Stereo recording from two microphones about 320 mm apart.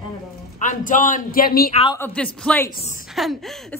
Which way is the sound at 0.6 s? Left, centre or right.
Left.